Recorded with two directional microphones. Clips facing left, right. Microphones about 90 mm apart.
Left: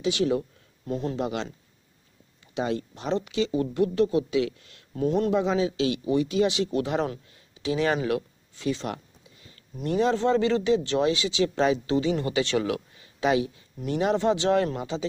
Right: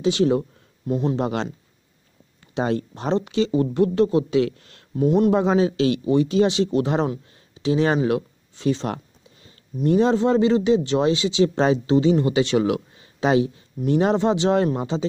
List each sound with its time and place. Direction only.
0.0 s speech: 35° right (ahead or behind)
0.8 s speech: 15° right (ahead or behind)
1.1 s speech: 45° right (ahead or behind)
2.5 s speech: 40° right (ahead or behind)
5.0 s speech: 15° right (ahead or behind)
5.3 s speech: 45° right (ahead or behind); by 7.1 s 30° right (ahead or behind)
7.2 s a sound: 30° right (ahead or behind)
10.1 s speech: 15° right (ahead or behind); by 14.1 s 35° right (ahead or behind)
14.1 s speech: 20° right (ahead or behind)